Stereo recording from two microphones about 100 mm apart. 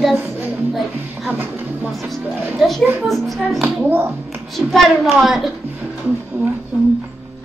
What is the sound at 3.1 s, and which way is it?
Speech, centre (ahead or behind).